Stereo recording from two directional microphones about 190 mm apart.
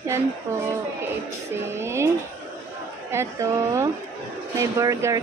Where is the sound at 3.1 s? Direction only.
15° right (ahead or behind).